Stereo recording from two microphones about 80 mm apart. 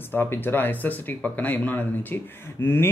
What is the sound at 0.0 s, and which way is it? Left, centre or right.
Speech, left.